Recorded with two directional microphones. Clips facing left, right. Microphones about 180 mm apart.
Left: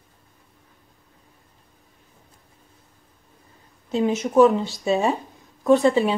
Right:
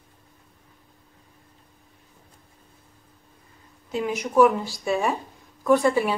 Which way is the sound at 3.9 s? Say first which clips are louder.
Left 3 dB; 25° left (ahead or behind).